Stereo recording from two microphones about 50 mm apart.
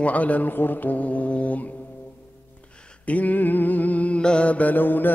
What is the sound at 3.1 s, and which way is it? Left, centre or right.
Mantra, left.